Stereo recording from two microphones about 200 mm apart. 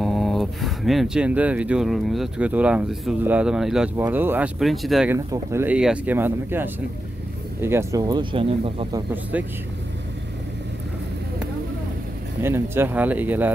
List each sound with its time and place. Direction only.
0.0 s speech: centre (ahead or behind)
5.1 s speech: 10° right (ahead or behind)
12.4 s speech: 10° right (ahead or behind)